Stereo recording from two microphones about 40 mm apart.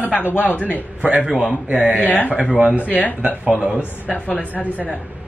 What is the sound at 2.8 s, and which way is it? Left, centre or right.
Speech, left.